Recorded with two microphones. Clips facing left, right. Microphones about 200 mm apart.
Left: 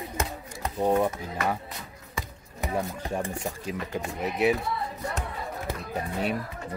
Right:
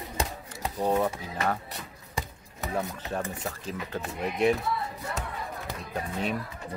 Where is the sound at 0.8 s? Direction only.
10° left (ahead or behind).